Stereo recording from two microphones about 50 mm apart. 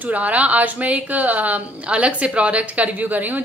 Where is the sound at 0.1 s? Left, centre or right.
Right.